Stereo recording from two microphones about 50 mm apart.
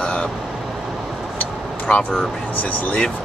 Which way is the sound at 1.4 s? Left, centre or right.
Left.